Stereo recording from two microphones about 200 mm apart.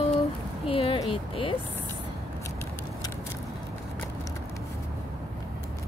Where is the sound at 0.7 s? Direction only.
25° left (ahead or behind).